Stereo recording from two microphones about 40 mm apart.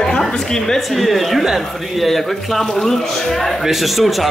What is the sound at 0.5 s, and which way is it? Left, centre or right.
Speech, centre.